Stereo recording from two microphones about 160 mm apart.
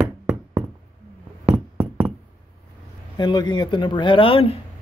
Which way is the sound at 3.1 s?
25° left (ahead or behind).